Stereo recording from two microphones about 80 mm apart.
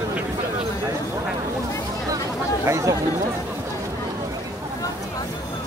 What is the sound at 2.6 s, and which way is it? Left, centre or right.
Speech, right.